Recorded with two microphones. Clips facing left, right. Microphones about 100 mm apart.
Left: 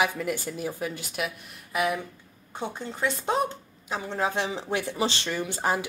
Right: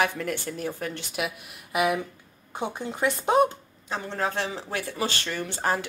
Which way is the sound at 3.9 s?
10° left (ahead or behind).